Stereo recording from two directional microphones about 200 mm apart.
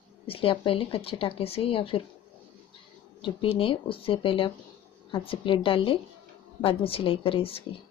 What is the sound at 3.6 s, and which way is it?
Speech, 25° left (ahead or behind).